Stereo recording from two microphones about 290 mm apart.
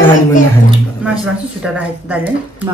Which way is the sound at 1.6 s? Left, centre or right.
Centre.